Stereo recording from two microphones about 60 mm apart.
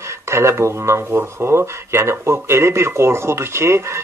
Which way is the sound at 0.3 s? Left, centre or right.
Right.